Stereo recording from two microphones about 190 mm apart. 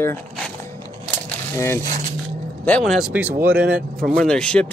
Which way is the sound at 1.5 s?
15° left (ahead or behind).